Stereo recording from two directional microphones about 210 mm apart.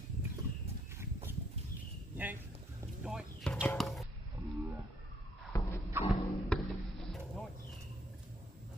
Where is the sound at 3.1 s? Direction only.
5° right (ahead or behind).